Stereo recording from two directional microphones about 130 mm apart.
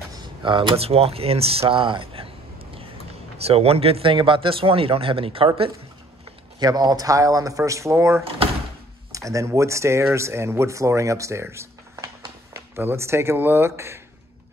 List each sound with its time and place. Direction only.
0.1 s speech: 35° right (ahead or behind)
3.3 s speech: 50° right (ahead or behind)
6.6 s speech: 30° right (ahead or behind)